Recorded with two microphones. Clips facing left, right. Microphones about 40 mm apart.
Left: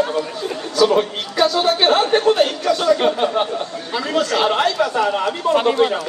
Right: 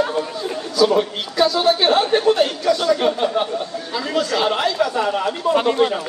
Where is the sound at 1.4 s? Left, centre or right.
Left.